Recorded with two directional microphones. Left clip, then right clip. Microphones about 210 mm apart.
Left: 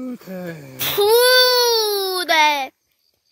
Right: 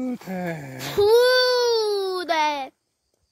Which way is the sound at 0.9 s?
5° left (ahead or behind).